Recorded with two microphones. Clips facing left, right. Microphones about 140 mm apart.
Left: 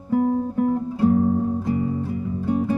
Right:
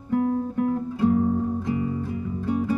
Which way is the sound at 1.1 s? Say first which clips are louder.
Left 3 dB; 30° left (ahead or behind).